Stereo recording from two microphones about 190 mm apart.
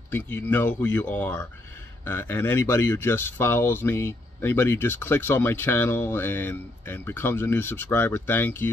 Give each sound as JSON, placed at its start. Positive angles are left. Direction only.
{"t": 0.1, "sound": "speech", "side_deg": 10}